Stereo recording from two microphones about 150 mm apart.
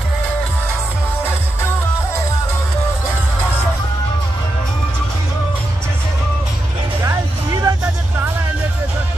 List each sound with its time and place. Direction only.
7.0 s music: 20° right (ahead or behind)